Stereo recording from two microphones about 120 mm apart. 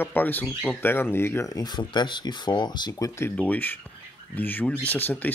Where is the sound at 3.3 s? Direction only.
15° left (ahead or behind).